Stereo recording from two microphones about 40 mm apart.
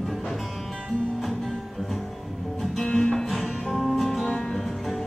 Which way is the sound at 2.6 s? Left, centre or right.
Centre.